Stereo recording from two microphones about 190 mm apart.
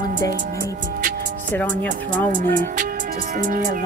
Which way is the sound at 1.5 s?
10° left (ahead or behind).